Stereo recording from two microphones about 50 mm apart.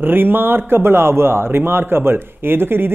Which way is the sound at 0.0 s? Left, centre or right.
Right.